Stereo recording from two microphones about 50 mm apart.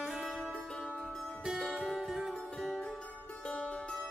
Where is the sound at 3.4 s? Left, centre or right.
Left.